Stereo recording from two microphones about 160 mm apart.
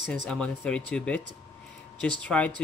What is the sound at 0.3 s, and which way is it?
Speech, 5° left (ahead or behind).